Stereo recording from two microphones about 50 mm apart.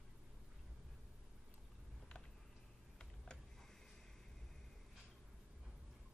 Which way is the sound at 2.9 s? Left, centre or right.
Centre.